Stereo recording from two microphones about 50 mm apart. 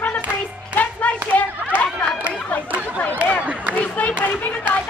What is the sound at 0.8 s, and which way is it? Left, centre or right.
Clapping, left.